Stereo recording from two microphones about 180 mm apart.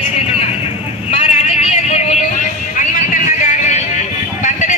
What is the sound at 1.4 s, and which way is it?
Vehicle, 35° left (ahead or behind).